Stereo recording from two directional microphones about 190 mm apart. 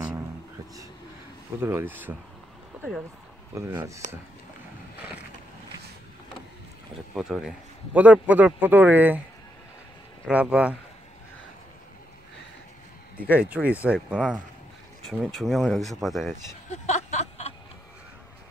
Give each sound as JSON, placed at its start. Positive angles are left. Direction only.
{"t": 1.6, "sound": "a man's voice", "side_deg": -10}
{"t": 3.5, "sound": "a man's voice", "side_deg": -15}
{"t": 7.2, "sound": "a man's voice", "side_deg": 0}
{"t": 10.2, "sound": "speech", "side_deg": -5}
{"t": 13.3, "sound": "speech", "side_deg": -5}
{"t": 16.7, "sound": "a sound", "side_deg": 35}